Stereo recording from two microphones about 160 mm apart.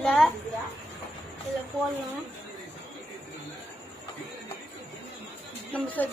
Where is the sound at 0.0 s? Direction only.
5° left (ahead or behind).